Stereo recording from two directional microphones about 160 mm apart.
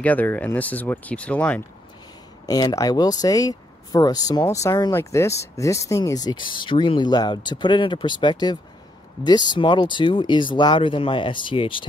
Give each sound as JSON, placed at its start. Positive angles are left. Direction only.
{"t": 0.0, "sound": "speech", "side_deg": 10}
{"t": 2.4, "sound": "speech", "side_deg": 25}